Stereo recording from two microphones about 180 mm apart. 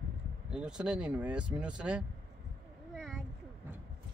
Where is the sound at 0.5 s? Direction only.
5° right (ahead or behind).